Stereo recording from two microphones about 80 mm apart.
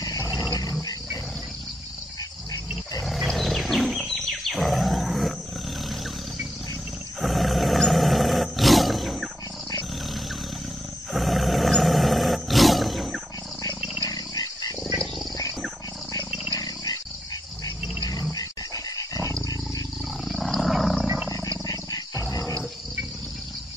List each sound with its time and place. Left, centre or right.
0.5 s roaring cats: left
3.0 s wild animals: centre
7.2 s roar: centre
11.1 s roar: centre
14.0 s dog: left
16.5 s dog: left
18.9 s dog: left
20.2 s wild animals: centre
21.6 s wild animals: left
22.2 s dog: left